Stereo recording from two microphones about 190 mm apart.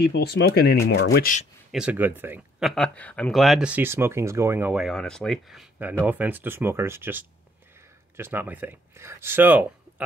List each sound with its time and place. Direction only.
0.0 s speech: 60° left (ahead or behind)
1.7 s speech: 5° right (ahead or behind)
2.7 s speech: 5° left (ahead or behind)